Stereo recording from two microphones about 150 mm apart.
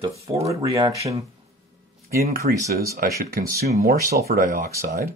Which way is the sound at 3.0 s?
80° right.